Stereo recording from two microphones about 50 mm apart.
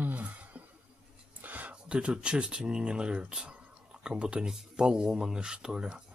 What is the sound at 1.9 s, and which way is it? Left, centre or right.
Speech, right.